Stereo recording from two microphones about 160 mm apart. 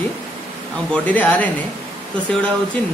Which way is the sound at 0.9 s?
10° left (ahead or behind).